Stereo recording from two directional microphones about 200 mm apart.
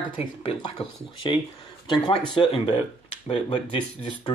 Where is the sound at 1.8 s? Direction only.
25° left (ahead or behind).